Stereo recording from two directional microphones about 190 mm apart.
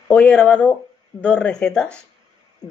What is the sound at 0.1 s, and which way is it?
Speech, 5° left (ahead or behind).